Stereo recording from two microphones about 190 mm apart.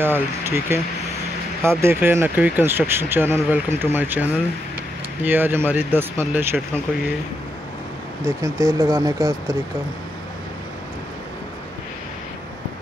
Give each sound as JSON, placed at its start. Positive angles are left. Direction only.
{"t": 0.0, "sound": "speech", "side_deg": -10}
{"t": 8.3, "sound": "speech", "side_deg": -15}